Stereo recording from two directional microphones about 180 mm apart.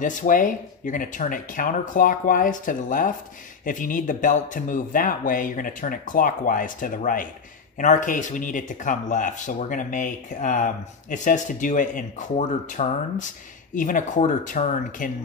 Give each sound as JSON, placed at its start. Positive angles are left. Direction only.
{"t": 0.0, "sound": "speech", "side_deg": 45}